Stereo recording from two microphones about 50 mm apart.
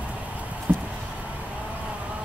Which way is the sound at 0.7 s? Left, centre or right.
Right.